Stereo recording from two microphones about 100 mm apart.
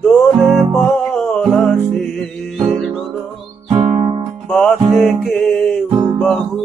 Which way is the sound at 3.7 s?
90° right.